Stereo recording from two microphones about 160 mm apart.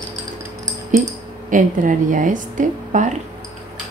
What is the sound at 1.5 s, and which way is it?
A woman's voice, 55° right (ahead or behind).